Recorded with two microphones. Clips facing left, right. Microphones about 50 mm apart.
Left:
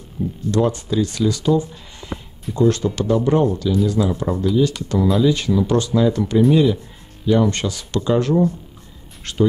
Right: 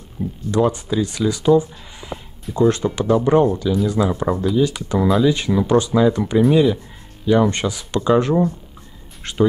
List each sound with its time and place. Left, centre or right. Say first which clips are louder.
0.2 s speech: right 1 dB; centre